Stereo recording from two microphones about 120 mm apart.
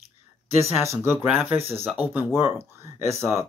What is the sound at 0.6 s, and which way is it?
Speech, 20° right (ahead or behind).